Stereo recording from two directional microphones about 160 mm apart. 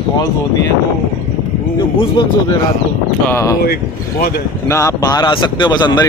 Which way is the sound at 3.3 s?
20° left (ahead or behind).